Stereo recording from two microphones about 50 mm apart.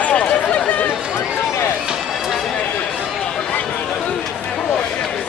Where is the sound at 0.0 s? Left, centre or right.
Left.